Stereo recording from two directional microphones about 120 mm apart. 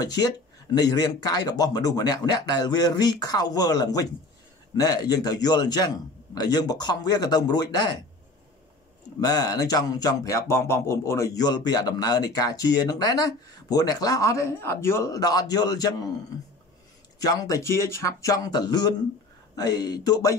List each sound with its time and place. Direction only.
0.0 s speech: 30° left (ahead or behind)
9.2 s speech: 30° left (ahead or behind)
17.2 s speech: 30° left (ahead or behind)